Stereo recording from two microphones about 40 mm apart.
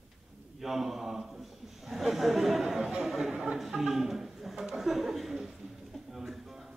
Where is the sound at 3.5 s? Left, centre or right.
Centre.